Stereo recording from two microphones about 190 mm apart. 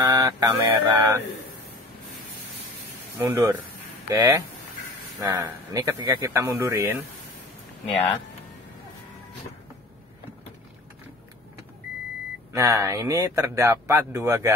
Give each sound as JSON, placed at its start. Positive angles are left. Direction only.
{"t": 0.0, "sound": "speech", "side_deg": -20}
{"t": 3.3, "sound": "speech", "side_deg": -10}
{"t": 12.5, "sound": "speech", "side_deg": -15}